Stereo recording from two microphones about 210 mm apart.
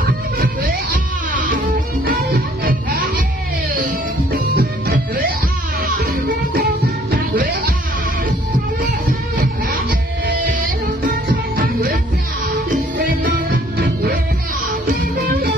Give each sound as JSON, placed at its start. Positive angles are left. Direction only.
{"t": 0.4, "sound": "music", "side_deg": -45}
{"t": 3.7, "sound": "music", "side_deg": -45}
{"t": 11.1, "sound": "music", "side_deg": -40}
{"t": 13.2, "sound": "music", "side_deg": -45}